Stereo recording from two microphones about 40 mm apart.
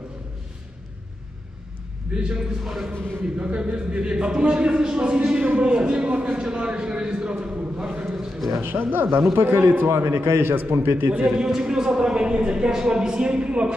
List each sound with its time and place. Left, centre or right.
2.1 s speech: right
2.6 s speech: centre
3.3 s speech: right
8.0 s a man's voice: centre
8.6 s speech: right
9.3 s a man's voice: right
9.8 s a man's voice: right
10.7 s a man's voice: right
11.2 s speech: centre